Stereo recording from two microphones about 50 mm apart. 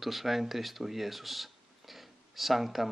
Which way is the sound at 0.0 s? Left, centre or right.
Centre.